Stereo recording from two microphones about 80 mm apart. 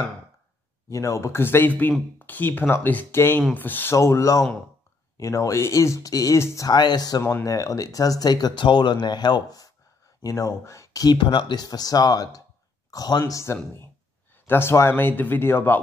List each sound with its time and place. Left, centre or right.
0.8 s speech: left
3.9 s speech: left
6.7 s speech: left
7.4 s speech: left
10.2 s speech: left
11.1 s speech: left
13.2 s speech: left